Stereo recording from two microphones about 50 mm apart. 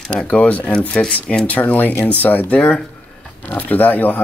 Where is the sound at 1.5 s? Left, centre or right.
Left.